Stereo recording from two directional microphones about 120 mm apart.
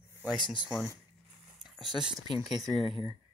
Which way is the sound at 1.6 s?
5° right (ahead or behind).